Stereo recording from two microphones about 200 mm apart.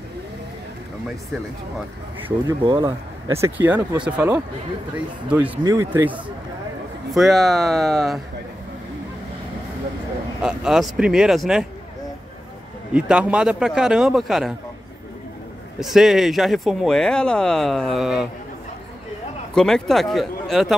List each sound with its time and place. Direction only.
2.2 s speech: 25° right (ahead or behind)
7.2 s speech: centre (ahead or behind)
10.4 s speech: 5° right (ahead or behind)
12.9 s speech: 5° right (ahead or behind)
15.8 s speech: centre (ahead or behind)
19.5 s speech: centre (ahead or behind)